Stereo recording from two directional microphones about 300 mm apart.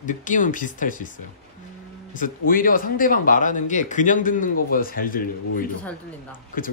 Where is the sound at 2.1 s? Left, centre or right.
Left.